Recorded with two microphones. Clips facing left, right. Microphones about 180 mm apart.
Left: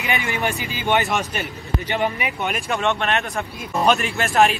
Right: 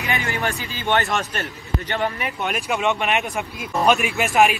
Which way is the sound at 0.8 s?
Centre (ahead or behind).